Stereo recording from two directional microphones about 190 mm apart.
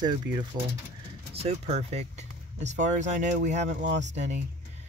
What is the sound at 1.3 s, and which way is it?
Speech, 30° right (ahead or behind).